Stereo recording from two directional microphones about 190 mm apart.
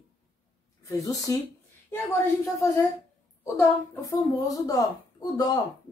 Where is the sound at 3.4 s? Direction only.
10° left (ahead or behind).